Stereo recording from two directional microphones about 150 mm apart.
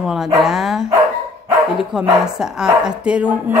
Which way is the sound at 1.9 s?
5° right (ahead or behind).